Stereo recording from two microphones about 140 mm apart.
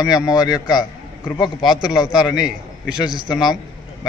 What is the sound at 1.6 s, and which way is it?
A man's voice, 5° right (ahead or behind).